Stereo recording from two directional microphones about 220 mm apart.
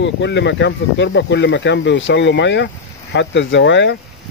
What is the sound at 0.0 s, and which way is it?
Speech, 55° left (ahead or behind).